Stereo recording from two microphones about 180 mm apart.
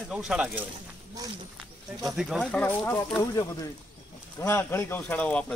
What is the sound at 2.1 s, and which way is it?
Speech, centre (ahead or behind).